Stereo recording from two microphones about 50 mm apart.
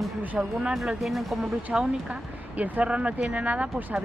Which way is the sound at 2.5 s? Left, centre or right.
Right.